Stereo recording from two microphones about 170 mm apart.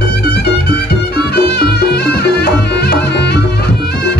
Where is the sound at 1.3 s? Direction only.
70° left (ahead or behind).